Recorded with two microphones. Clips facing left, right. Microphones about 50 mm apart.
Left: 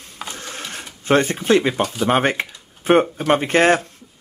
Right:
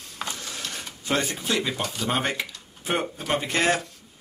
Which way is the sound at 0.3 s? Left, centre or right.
Left.